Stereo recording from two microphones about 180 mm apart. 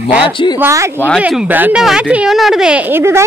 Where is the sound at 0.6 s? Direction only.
15° right (ahead or behind).